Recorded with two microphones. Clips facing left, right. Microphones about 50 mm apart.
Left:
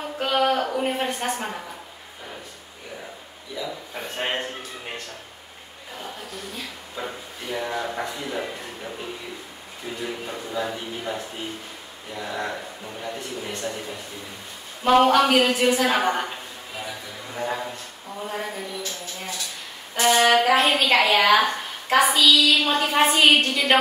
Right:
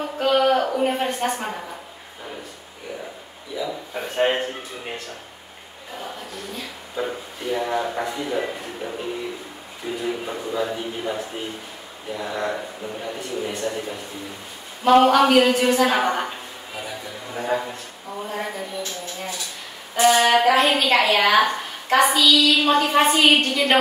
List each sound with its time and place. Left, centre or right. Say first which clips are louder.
0.2 s a woman's voice: right 3 dB; centre
3.5 s a man's voice: right 4 dB; centre
6.5 s a woman's voice: right 3 dB; centre
10.0 s a man's voice: right 5 dB; centre
17.3 s a man's voice: right 4 dB; centre
20.0 s a woman's voice: right 2 dB; centre